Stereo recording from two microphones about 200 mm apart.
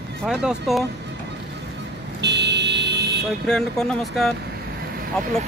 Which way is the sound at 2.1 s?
60° right (ahead or behind).